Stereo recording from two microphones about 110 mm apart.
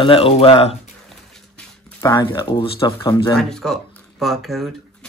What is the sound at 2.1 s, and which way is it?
Speech, 45° left (ahead or behind).